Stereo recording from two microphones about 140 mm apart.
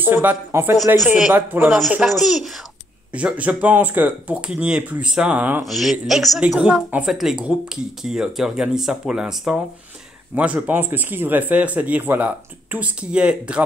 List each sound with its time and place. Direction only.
0.0 s speech: 15° right (ahead or behind)
2.0 s speech: centre (ahead or behind)